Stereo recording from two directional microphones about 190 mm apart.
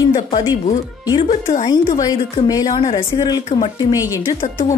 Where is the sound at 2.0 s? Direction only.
20° left (ahead or behind).